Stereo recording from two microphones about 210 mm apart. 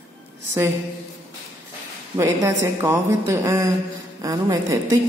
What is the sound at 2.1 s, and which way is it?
Speech, 15° right (ahead or behind).